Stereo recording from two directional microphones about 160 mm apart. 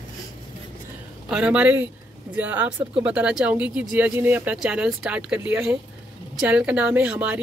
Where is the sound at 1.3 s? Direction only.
5° right (ahead or behind).